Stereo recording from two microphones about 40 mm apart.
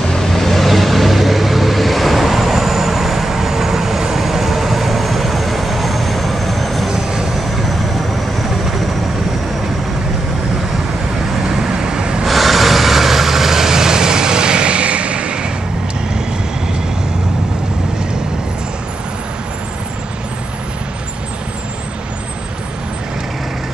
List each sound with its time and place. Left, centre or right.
0.1 s vehicle: centre
6.9 s vehicle: centre
7.3 s vehicle: centre
11.4 s vehicle: centre
12.3 s vehicle: centre; by 15.4 s right